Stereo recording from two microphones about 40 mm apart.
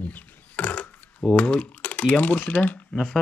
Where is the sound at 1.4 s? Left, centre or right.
Left.